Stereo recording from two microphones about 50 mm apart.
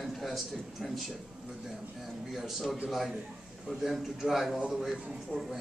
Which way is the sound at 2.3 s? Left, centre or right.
Centre.